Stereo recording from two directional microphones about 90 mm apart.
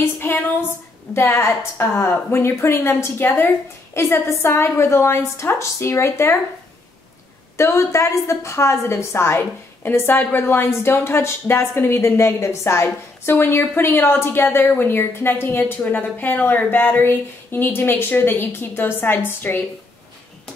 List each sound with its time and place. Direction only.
0.0 s a sound: 25° left (ahead or behind)
1.1 s a woman's voice: 30° left (ahead or behind)
7.5 s a woman's voice: 35° left (ahead or behind)